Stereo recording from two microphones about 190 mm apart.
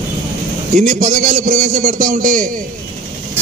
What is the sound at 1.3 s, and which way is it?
A man's voice, 45° right (ahead or behind).